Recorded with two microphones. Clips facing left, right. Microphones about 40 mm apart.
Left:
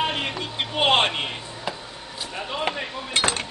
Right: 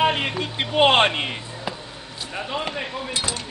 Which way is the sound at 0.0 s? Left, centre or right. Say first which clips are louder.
Right 5 dB; centre.